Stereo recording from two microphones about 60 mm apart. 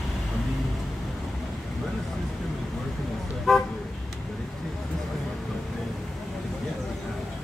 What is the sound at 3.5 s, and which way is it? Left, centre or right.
Toot, centre.